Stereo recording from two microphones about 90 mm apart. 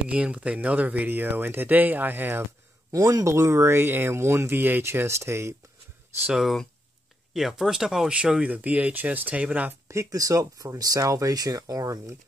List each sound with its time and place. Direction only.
0.1 s speech: 15° right (ahead or behind)
2.9 s speech: 40° right (ahead or behind)
6.4 s speech: 5° left (ahead or behind); by 9.8 s 15° right (ahead or behind)
9.8 s speech: 35° right (ahead or behind)